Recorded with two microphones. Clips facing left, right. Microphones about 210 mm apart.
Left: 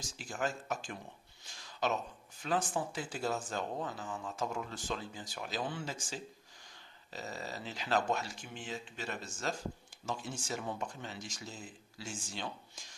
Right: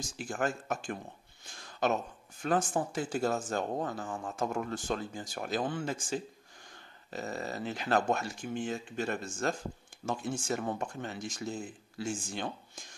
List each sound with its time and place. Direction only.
0.2 s speech: 50° right (ahead or behind)
1.4 s a sound: 50° right (ahead or behind)
2.4 s speech: 50° right (ahead or behind)